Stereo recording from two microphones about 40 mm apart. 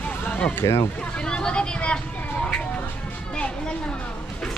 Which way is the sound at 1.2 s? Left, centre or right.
Left.